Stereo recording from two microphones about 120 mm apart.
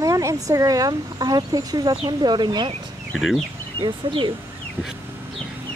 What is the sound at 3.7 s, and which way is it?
Speech, 40° right (ahead or behind).